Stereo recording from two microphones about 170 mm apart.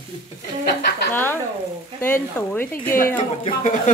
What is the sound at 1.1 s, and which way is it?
Speech, 10° left (ahead or behind).